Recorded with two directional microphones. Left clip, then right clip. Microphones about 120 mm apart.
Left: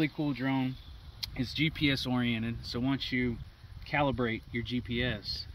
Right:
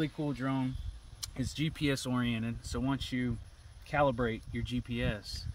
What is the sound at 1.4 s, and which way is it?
Speech, 45° right (ahead or behind).